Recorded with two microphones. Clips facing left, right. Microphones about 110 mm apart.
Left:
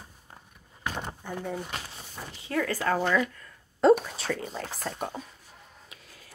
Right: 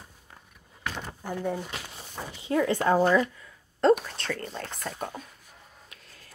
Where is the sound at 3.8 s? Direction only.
5° left (ahead or behind).